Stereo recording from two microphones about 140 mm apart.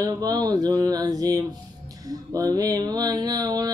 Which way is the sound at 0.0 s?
30° right (ahead or behind).